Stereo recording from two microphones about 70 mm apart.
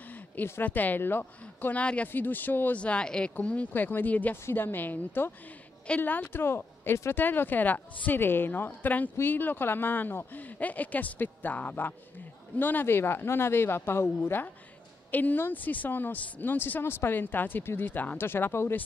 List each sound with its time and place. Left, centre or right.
0.1 s speech: left
1.8 s speech: centre
2.8 s speech: centre; by 18.8 s left